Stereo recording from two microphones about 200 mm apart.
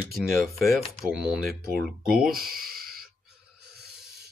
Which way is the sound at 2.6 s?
45° right (ahead or behind).